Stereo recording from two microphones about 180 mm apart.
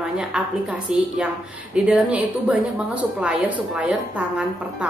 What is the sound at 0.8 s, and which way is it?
A woman's voice, 5° right (ahead or behind).